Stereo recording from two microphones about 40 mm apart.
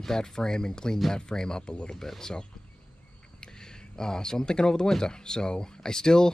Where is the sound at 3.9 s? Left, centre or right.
Centre.